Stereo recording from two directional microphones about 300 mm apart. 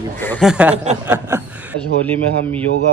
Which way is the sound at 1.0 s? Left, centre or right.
Centre.